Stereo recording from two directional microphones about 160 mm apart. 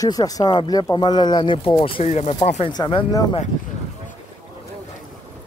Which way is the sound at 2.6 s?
30° left (ahead or behind).